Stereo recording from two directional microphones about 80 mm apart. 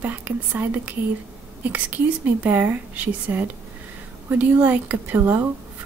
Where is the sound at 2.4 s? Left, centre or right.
Right.